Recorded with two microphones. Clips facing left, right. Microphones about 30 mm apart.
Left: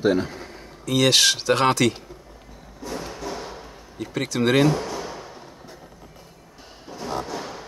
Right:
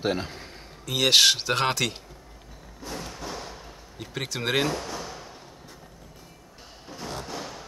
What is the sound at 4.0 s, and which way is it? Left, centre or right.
Speech, centre.